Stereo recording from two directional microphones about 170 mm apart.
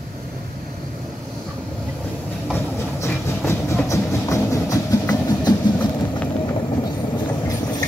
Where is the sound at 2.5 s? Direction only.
15° left (ahead or behind).